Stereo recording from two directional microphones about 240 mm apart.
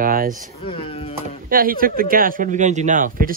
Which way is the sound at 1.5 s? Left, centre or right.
Right.